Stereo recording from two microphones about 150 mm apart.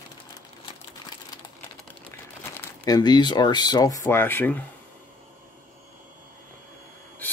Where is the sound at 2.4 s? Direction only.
15° left (ahead or behind).